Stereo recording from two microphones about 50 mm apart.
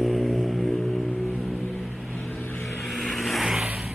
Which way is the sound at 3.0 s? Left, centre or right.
Centre.